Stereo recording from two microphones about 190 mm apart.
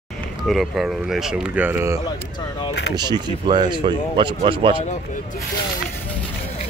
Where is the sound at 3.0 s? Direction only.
20° right (ahead or behind).